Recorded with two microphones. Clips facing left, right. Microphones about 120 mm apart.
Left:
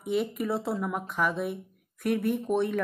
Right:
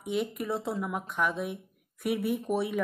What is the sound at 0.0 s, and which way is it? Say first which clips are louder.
Speech: left 3 dB; centre (ahead or behind).